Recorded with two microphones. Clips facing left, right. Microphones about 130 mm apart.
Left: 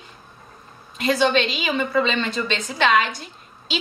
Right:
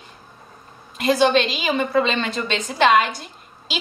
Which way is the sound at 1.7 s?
35° right (ahead or behind).